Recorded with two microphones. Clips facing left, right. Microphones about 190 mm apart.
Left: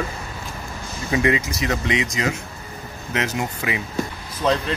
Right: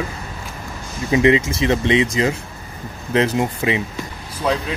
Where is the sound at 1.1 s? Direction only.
25° right (ahead or behind).